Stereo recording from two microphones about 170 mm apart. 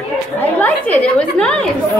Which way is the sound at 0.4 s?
10° left (ahead or behind).